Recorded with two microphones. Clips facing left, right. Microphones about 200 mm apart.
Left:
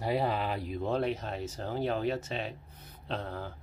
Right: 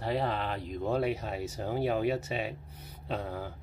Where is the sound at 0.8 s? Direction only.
5° right (ahead or behind).